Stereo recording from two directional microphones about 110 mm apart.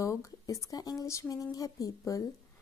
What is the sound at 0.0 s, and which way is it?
A woman's voice, 30° left (ahead or behind).